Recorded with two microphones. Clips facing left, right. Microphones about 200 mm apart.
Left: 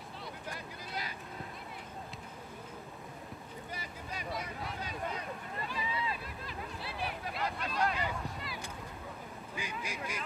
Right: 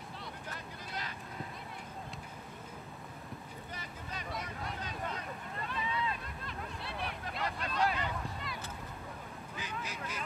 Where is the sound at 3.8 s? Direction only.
5° left (ahead or behind).